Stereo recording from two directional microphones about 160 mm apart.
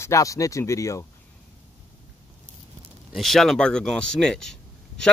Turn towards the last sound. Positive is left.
turn(degrees=5)  # may be behind; listen again after turning